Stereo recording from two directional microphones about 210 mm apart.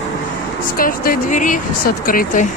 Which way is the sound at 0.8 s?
40° left (ahead or behind).